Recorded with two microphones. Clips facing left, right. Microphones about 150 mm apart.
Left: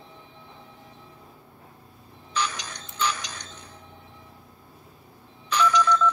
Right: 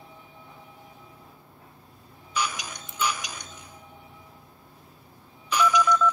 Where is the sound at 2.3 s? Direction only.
10° right (ahead or behind).